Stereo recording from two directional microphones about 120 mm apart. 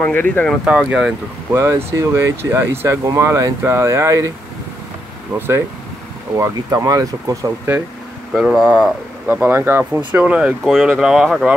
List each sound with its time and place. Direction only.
0.0 s speech: 10° left (ahead or behind)
0.7 s speech: 5° right (ahead or behind)
1.5 s speech: 20° right (ahead or behind)
6.3 s speech: 25° right (ahead or behind)
8.3 s speech: centre (ahead or behind)